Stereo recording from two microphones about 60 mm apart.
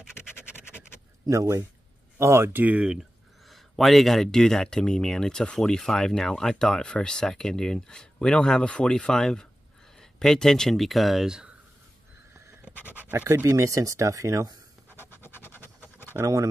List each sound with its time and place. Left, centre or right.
0.1 s scratch: left
1.2 s speech: right
2.1 s speech: right
2.6 s speech: centre
3.4 s speech: centre
12.6 s pant: left
13.1 s speech: right
13.5 s speech: right
14.9 s scratch: left
16.1 s speech: right